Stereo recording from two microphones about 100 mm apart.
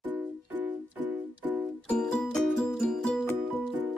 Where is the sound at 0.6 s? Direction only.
15° right (ahead or behind).